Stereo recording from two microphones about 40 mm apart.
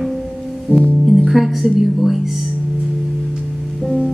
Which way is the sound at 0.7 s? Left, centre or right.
Left.